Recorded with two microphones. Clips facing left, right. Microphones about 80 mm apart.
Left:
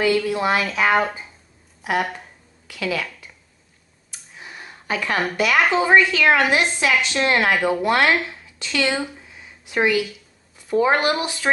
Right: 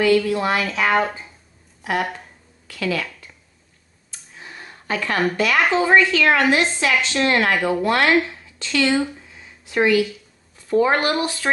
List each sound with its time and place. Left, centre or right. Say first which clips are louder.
0.0 s a woman's voice: right 2 dB; centre
2.7 s a woman's voice: right 1 dB; centre
4.1 s a sound: even; centre
5.2 s a woman's voice: even; centre
7.8 s a woman's voice: right 1 dB; centre
8.9 s a sound: right 5 dB; centre
10.7 s a woman's voice: even; centre